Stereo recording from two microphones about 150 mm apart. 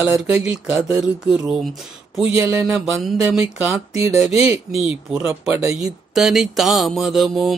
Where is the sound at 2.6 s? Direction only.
5° right (ahead or behind).